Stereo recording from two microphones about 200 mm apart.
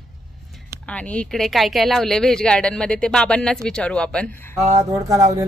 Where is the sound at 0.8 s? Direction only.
5° left (ahead or behind).